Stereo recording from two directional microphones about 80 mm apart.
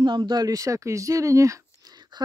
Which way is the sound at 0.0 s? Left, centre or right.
Right.